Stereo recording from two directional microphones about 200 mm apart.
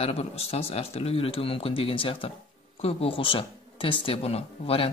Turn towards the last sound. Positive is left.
turn(degrees=30)  # may be behind; listen again after turning